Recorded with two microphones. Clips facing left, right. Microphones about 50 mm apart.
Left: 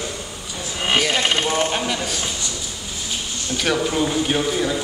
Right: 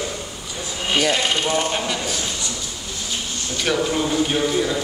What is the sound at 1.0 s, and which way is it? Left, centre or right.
Speech, centre.